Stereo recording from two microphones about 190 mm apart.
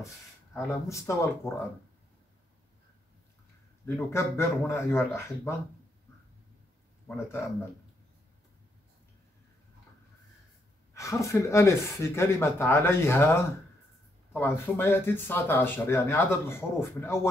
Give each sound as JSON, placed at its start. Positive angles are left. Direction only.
{"t": 0.7, "sound": "speech", "side_deg": 15}
{"t": 3.8, "sound": "speech", "side_deg": 15}
{"t": 7.2, "sound": "speech", "side_deg": 15}
{"t": 11.0, "sound": "speech", "side_deg": 15}